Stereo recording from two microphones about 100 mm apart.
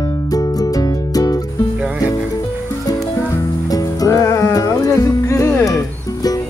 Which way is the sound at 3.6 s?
40° left (ahead or behind).